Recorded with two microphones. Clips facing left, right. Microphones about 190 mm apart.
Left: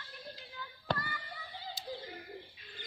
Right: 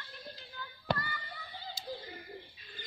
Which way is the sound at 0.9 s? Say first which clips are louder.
Right 2 dB; 10° right (ahead or behind).